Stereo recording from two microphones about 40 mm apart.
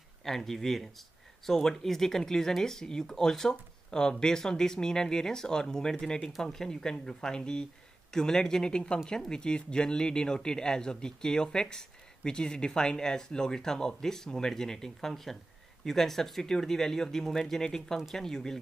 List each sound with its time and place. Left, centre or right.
0.2 s speech: centre